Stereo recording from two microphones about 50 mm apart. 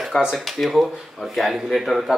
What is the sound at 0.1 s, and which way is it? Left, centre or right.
Speech, centre.